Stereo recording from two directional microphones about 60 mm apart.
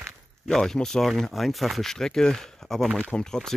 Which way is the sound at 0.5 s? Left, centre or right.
Centre.